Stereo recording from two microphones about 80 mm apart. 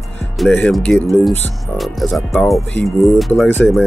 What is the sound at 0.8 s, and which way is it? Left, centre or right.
Speech, centre.